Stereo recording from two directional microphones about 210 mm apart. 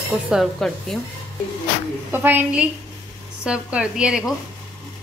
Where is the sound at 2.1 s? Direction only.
10° right (ahead or behind).